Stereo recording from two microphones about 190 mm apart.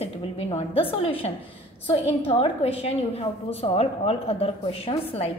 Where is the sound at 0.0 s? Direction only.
30° left (ahead or behind).